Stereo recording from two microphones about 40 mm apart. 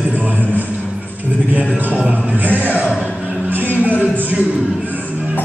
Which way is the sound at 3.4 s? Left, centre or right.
Right.